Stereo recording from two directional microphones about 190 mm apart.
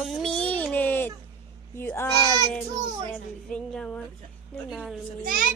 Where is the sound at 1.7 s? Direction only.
10° left (ahead or behind).